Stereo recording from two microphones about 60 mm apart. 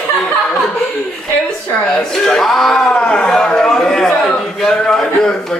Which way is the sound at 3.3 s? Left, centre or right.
Centre.